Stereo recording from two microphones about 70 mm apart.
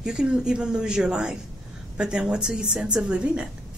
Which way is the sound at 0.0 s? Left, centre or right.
Centre.